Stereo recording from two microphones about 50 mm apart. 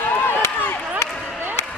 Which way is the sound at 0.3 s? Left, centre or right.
Left.